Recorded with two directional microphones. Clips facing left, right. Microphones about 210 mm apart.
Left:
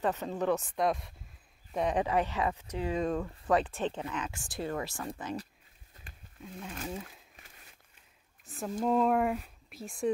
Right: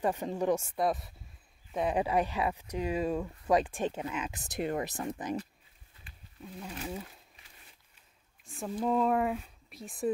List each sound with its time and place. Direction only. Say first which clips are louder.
0.0 s speech: right 1 dB; 15° right (ahead or behind)
6.0 s a sound: left 3 dB; 40° left (ahead or behind)
6.4 s speech: even; centre (ahead or behind)
8.5 s speech: left 1 dB; centre (ahead or behind)